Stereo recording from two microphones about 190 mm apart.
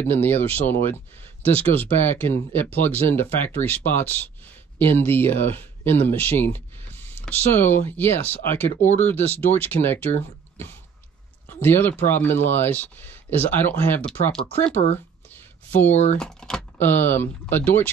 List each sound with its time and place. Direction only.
0.0 s speech: 10° left (ahead or behind)
11.4 s speech: 10° left (ahead or behind)
14.4 s speech: 35° left (ahead or behind)
15.2 s a sound: 10° left (ahead or behind)
16.2 s speech: 5° left (ahead or behind)